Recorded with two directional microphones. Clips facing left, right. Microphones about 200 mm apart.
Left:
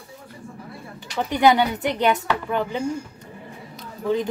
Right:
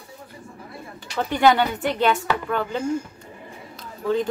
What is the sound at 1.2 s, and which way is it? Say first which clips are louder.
A woman's voice: left 1 dB; 15° left (ahead or behind).